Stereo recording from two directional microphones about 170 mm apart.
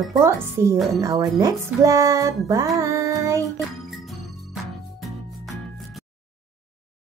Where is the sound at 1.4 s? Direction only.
20° right (ahead or behind).